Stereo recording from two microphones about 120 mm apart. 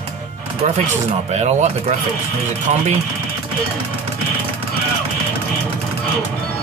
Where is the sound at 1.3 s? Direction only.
70° right (ahead or behind).